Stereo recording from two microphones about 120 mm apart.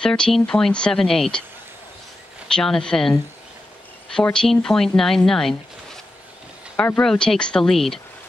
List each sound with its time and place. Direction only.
0.0 s speech: 5° left (ahead or behind)
2.4 s speech: 5° left (ahead or behind)